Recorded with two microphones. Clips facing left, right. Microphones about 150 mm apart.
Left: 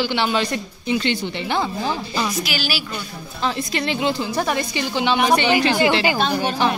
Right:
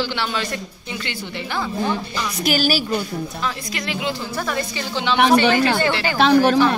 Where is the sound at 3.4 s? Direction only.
25° left (ahead or behind).